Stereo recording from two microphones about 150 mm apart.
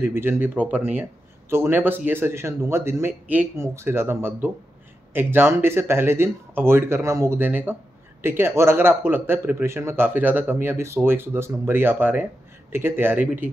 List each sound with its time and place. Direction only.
0.1 s speech: 15° right (ahead or behind)